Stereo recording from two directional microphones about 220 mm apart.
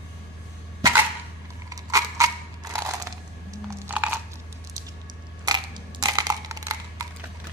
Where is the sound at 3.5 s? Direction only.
10° right (ahead or behind).